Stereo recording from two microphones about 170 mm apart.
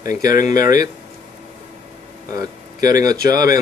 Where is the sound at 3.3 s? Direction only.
55° left (ahead or behind).